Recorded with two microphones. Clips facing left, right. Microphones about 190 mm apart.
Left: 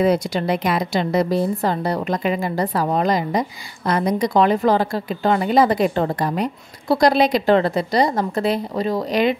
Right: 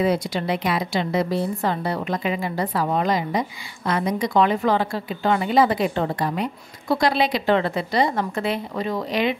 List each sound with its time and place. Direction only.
0.0 s a woman's voice: 45° left (ahead or behind)